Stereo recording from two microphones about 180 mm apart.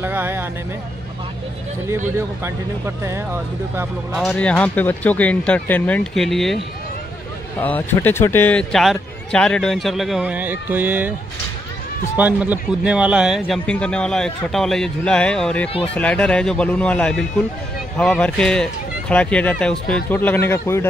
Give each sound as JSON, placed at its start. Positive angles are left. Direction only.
{"t": 0.0, "sound": "music", "side_deg": -10}
{"t": 3.0, "sound": "speech", "side_deg": -15}
{"t": 4.1, "sound": "speech", "side_deg": 0}
{"t": 7.6, "sound": "a man's voice", "side_deg": 10}
{"t": 12.2, "sound": "a man's voice", "side_deg": -10}